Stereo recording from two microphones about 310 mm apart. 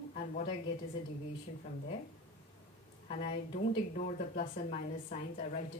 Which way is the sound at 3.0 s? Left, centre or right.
Left.